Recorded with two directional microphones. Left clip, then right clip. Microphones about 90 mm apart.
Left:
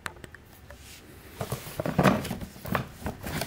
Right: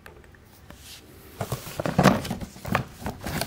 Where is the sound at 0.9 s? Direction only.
30° right (ahead or behind).